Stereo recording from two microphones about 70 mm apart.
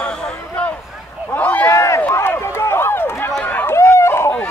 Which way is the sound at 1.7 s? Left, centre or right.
Left.